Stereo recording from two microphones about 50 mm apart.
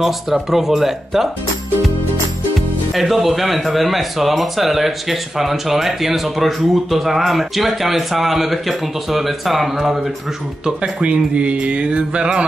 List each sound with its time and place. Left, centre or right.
0.0 s speech: centre
2.9 s speech: centre
10.6 s music: right